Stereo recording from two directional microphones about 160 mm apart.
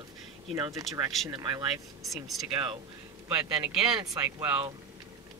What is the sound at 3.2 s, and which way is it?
Speech, 5° right (ahead or behind).